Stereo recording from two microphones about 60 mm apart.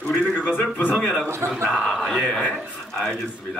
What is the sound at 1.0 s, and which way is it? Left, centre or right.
A man's voice, centre.